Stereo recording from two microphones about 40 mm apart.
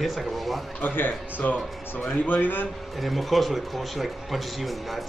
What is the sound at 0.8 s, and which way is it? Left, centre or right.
Speech, left.